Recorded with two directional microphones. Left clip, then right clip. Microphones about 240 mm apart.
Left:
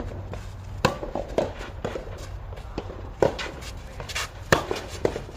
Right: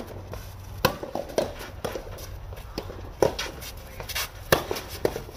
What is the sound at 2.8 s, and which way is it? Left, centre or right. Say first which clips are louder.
Clip-clop: left 1 dB; right.